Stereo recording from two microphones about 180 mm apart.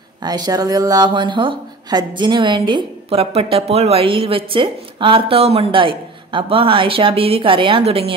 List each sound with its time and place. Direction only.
0.2 s a woman's voice: 20° right (ahead or behind)